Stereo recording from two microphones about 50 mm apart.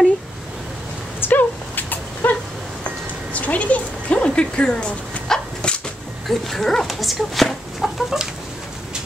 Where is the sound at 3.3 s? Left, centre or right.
Left.